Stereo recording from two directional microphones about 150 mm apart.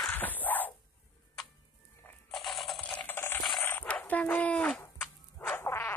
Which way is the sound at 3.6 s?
15° left (ahead or behind).